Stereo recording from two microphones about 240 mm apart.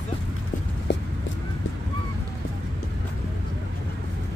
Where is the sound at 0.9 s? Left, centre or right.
Left.